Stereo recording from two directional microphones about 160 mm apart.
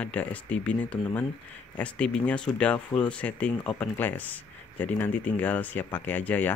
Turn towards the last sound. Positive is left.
turn(degrees=10)  # may be behind; listen again after turning